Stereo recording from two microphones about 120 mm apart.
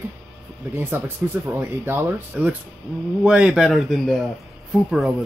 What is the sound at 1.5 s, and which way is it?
Speech, 20° right (ahead or behind).